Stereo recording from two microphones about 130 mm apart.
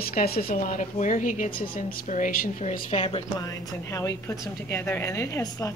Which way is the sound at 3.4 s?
30° left (ahead or behind).